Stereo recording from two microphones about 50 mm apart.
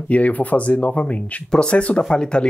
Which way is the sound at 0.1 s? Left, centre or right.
Left.